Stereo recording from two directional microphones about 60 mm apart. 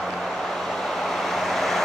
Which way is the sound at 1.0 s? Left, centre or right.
Centre.